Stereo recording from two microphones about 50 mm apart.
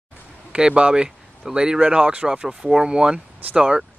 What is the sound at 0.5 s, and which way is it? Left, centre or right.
Speech, centre.